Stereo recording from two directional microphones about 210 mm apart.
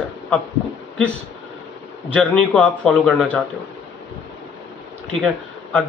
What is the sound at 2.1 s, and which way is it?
A man's voice, 5° left (ahead or behind).